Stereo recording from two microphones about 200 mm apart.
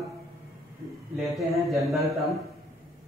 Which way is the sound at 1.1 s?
Centre (ahead or behind).